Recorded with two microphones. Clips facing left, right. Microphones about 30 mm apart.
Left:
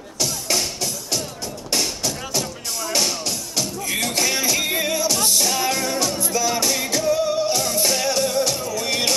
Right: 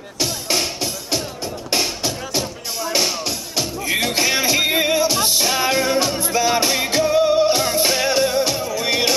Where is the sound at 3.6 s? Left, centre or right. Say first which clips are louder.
Right 4 dB; right.